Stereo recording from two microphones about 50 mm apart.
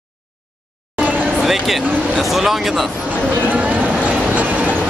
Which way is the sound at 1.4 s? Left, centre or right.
Centre.